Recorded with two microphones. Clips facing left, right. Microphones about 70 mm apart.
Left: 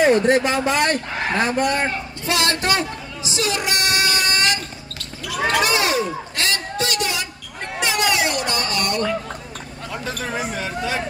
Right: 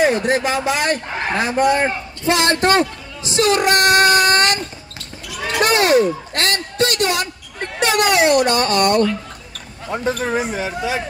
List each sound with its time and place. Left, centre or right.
0.0 s speech: centre
2.2 s a man's voice: right
3.3 s child singing: right
5.6 s a man's voice: right
9.8 s speech: right
10.4 s speech: centre